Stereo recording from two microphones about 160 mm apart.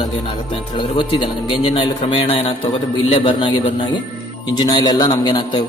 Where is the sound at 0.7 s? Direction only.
30° left (ahead or behind).